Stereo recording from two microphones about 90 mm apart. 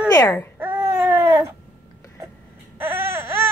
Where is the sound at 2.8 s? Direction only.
25° right (ahead or behind).